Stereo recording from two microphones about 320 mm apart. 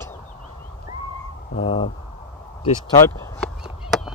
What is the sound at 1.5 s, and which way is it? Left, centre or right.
Speech, centre.